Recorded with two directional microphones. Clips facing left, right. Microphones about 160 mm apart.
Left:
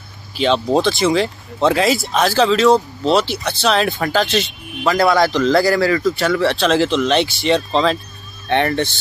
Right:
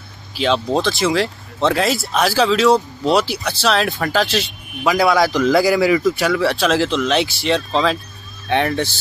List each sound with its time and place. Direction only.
0.4 s speech: centre (ahead or behind)
5.8 s speech: 15° right (ahead or behind)